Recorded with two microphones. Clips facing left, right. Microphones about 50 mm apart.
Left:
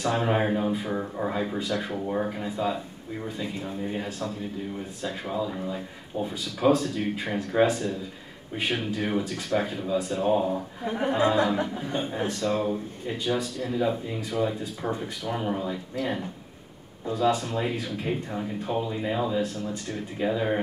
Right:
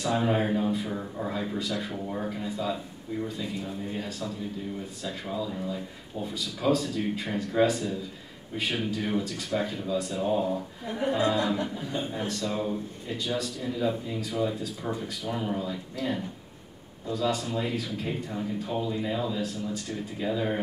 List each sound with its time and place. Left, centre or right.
0.0 s speech: left
0.3 s speech: centre
1.9 s speech: centre
5.3 s speech: left
11.0 s speech: left